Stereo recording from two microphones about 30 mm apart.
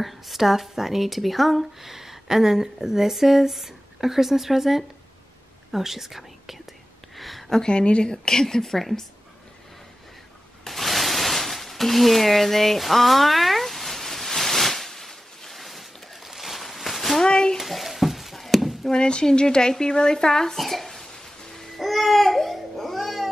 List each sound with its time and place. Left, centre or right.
0.0 s speech: centre
1.9 s speech: centre
7.2 s a sound: centre
7.6 s speech: left
8.3 s speech: centre
8.6 s speech: centre
10.6 s a sound: centre
17.2 s a sound: left
17.6 s stir: centre
18.9 s speech: left
20.5 s speech: centre
21.1 s music: centre
21.7 s babbling: centre